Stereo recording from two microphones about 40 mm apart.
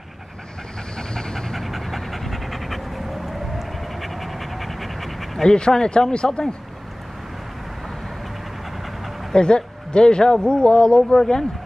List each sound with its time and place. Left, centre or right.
0.9 s pant: centre
1.6 s pant: centre
5.4 s a man's voice: centre
9.3 s a man's voice: left